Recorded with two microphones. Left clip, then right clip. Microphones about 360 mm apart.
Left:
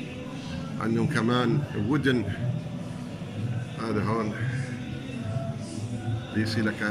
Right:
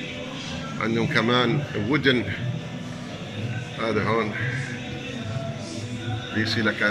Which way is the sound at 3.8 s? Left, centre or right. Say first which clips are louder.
Right 6 dB; centre.